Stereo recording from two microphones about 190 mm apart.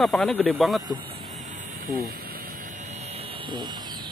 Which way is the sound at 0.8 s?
25° right (ahead or behind).